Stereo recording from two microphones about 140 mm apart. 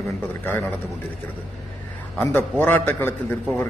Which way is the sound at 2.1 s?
15° left (ahead or behind).